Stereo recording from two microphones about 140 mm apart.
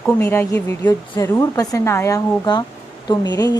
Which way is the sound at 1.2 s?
25° left (ahead or behind).